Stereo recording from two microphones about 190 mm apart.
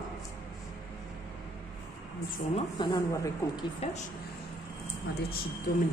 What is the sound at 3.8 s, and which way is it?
Speech, 30° left (ahead or behind).